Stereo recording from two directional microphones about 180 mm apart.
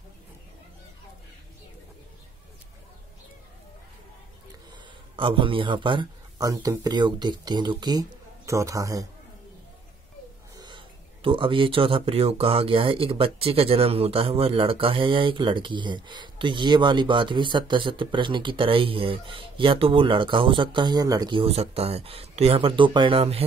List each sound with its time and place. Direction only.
5.1 s speech: 30° right (ahead or behind)
11.2 s speech: 30° right (ahead or behind)